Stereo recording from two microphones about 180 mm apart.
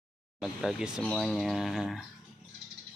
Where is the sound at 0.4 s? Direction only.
Centre (ahead or behind).